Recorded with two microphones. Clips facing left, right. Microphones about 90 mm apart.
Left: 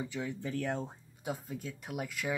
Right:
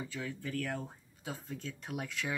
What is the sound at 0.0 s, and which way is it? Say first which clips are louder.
Speech: left 3 dB; 20° left (ahead or behind).